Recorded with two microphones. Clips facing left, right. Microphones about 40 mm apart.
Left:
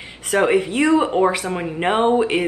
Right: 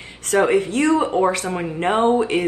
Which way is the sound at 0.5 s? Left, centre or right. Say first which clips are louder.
Left 1 dB; left.